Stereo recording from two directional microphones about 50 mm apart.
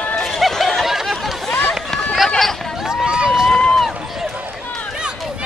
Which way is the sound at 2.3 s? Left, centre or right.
Centre.